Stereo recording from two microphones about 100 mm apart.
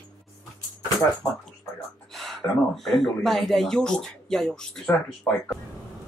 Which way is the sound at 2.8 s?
Centre (ahead or behind).